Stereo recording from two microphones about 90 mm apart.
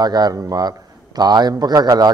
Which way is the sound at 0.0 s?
50° right (ahead or behind).